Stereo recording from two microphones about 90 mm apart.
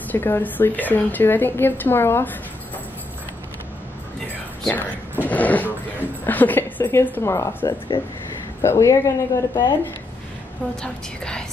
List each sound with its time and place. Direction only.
0.1 s a woman's voice: 20° left (ahead or behind)
4.6 s a sound: 20° left (ahead or behind)
6.2 s a woman's voice: 20° left (ahead or behind); by 9.7 s 35° left (ahead or behind)
10.8 s a woman's voice: 10° left (ahead or behind)